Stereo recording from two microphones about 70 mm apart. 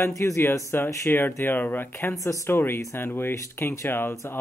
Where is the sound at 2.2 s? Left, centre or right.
Left.